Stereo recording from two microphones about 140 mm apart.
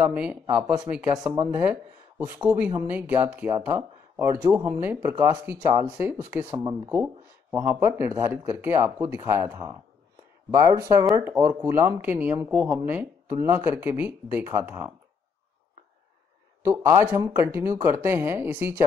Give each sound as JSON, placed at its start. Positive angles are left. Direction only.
{"t": 0.0, "sound": "speech", "side_deg": -10}
{"t": 16.6, "sound": "speech", "side_deg": -20}